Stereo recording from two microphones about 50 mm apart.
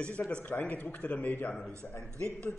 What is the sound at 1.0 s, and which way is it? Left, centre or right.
Speech, left.